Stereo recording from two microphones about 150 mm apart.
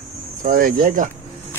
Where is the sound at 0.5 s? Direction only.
75° right (ahead or behind).